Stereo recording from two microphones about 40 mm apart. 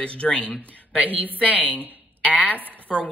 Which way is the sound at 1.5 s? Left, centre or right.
Left.